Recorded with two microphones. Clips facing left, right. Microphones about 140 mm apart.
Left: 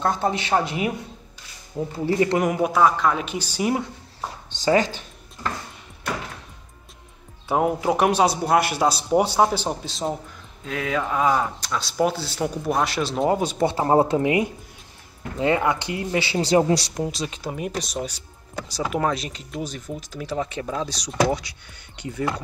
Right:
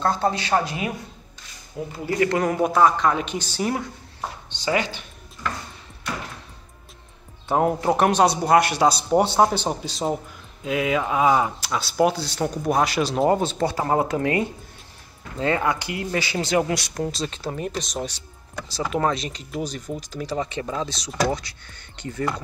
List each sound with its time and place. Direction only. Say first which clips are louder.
0.0 s speech: right 1 dB; 20° left (ahead or behind)
2.0 s speech: left 1 dB; 25° left (ahead or behind)
2.4 s a woman's voice: right 1 dB; 5° left (ahead or behind)
4.5 s speech: left 5 dB; 40° left (ahead or behind)
7.4 s speech: right 1 dB; 5° left (ahead or behind)
13.4 s a woman's voice: left 1 dB; 15° left (ahead or behind)
13.7 s speech: left 5 dB; 25° left (ahead or behind)
14.2 s a woman's voice: left 2 dB; 15° left (ahead or behind); by 16.9 s 30° left (ahead or behind)
16.9 s a woman's voice: even; 10° left (ahead or behind)